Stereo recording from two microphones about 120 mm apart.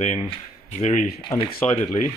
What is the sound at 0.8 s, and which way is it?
Speech, 90° left.